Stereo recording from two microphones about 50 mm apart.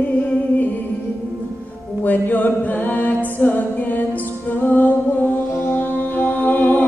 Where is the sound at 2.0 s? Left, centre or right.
Left.